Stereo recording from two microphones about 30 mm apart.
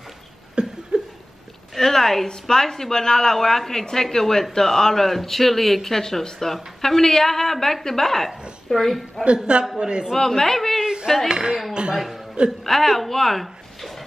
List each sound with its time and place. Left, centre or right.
0.6 s a sound: right
1.8 s a woman's voice: centre
9.2 s speech: centre
9.8 s a man's voice: right
10.1 s speech: centre
10.8 s a sound: right
11.2 s speech: centre
12.6 s a woman's voice: centre